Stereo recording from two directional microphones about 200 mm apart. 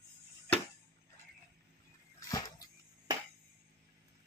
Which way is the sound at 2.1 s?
15° left (ahead or behind).